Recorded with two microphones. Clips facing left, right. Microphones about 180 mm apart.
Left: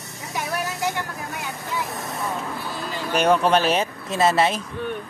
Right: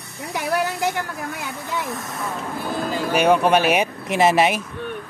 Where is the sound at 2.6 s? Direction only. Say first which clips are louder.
Right 6 dB; 50° right (ahead or behind).